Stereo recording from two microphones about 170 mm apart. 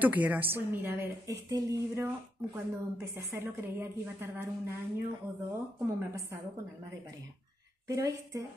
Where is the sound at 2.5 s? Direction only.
15° right (ahead or behind).